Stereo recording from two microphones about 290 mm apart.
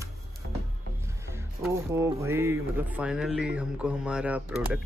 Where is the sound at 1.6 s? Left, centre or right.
Centre.